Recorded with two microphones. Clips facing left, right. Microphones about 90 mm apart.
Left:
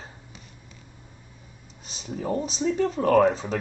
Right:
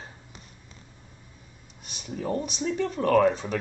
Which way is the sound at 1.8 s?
30° left (ahead or behind).